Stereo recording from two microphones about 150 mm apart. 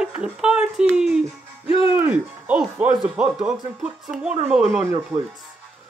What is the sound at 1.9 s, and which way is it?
Speech, 10° right (ahead or behind).